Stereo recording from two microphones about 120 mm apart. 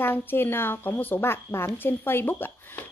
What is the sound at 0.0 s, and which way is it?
A woman's voice, 15° left (ahead or behind).